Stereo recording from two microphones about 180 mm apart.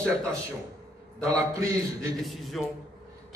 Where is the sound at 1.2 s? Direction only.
15° right (ahead or behind).